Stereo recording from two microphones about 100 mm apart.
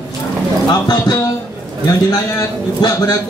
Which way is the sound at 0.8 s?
40° left (ahead or behind).